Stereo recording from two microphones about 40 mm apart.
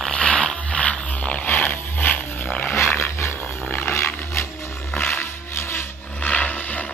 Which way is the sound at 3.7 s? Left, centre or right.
Left.